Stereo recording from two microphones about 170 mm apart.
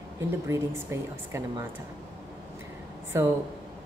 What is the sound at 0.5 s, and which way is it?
A woman's voice, 15° right (ahead or behind).